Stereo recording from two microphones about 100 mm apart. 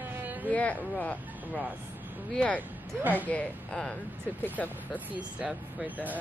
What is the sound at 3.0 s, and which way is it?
Speech, 15° right (ahead or behind).